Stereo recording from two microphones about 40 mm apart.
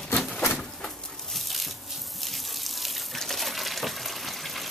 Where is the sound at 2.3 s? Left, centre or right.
Centre.